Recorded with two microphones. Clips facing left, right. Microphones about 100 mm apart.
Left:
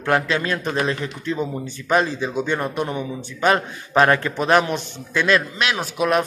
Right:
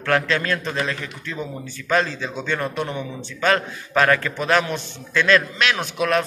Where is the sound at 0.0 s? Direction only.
15° left (ahead or behind).